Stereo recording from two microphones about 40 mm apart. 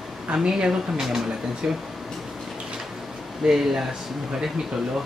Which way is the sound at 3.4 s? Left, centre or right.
Centre.